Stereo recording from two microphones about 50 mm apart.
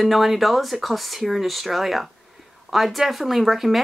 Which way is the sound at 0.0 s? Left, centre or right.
Centre.